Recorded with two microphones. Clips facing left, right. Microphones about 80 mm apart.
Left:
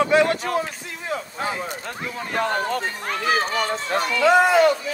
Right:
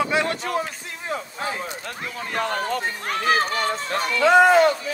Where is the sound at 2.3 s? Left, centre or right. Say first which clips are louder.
Left 2 dB; left.